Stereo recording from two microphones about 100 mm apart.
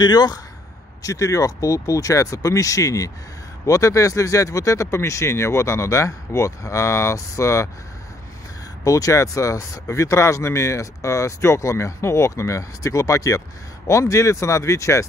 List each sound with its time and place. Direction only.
0.0 s speech: 45° left (ahead or behind)
8.8 s speech: 35° left (ahead or behind)